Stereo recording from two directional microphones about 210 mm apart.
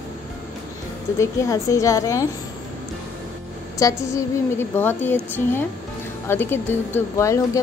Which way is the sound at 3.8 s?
15° left (ahead or behind).